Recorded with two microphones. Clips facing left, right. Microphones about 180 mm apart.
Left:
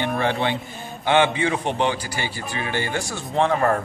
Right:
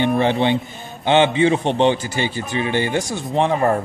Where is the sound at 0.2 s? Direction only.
20° right (ahead or behind).